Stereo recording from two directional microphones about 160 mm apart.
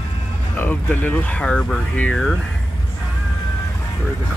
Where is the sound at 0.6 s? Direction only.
10° left (ahead or behind).